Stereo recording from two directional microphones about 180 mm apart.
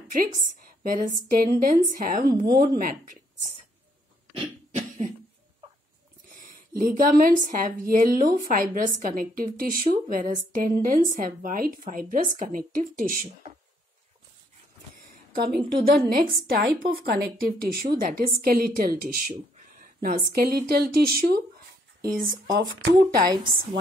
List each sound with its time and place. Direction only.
0.1 s a woman's voice: 50° right (ahead or behind)
2.4 s speech: 25° right (ahead or behind)
2.7 s a woman's voice: 50° right (ahead or behind)
4.7 s cough: 45° right (ahead or behind)
6.2 s a sound: 50° right (ahead or behind)
6.9 s a woman's voice: 50° right (ahead or behind)
15.3 s a woman's voice: 60° right (ahead or behind)
22.4 s a woman's voice: 65° right (ahead or behind)